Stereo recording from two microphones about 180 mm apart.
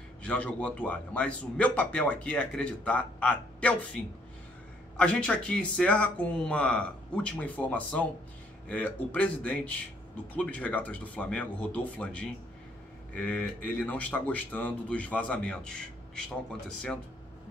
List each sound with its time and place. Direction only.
0.2 s speech: 5° left (ahead or behind)